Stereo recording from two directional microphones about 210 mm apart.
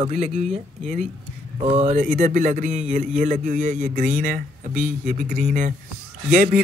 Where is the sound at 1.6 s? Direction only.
30° right (ahead or behind).